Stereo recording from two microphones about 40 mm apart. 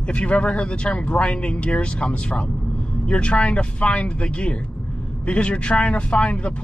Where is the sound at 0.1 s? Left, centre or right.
Left.